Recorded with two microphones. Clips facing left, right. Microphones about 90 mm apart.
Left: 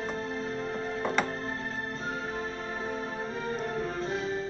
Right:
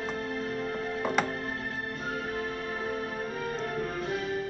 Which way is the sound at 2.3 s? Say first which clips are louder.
Right 1 dB; 25° left (ahead or behind).